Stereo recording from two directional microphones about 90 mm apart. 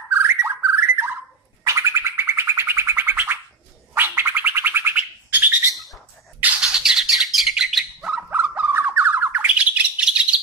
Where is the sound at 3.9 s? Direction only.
25° right (ahead or behind).